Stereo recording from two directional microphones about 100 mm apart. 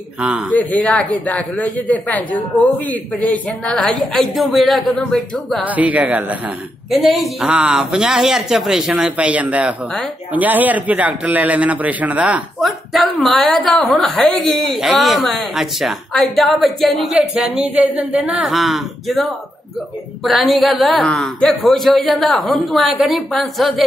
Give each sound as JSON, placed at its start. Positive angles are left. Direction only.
{"t": 0.2, "sound": "speech", "side_deg": -10}
{"t": 0.5, "sound": "a man's voice", "side_deg": 15}
{"t": 5.6, "sound": "speech", "side_deg": -15}
{"t": 6.9, "sound": "speech", "side_deg": 0}
{"t": 12.5, "sound": "a man's voice", "side_deg": 0}
{"t": 20.2, "sound": "a man's voice", "side_deg": 0}